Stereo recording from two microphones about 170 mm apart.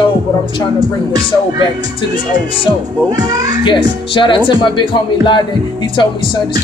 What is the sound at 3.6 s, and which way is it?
Speech, 30° left (ahead or behind).